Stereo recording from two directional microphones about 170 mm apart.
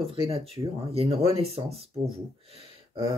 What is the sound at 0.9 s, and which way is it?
Speech, 35° right (ahead or behind).